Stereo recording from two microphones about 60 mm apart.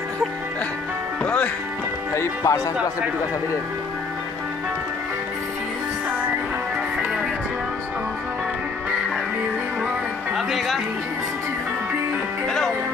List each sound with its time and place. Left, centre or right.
1.2 s music: left
2.4 s speech: left
10.3 s music: centre
12.4 s music: centre